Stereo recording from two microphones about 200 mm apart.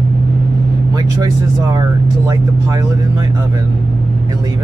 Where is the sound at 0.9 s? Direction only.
20° right (ahead or behind).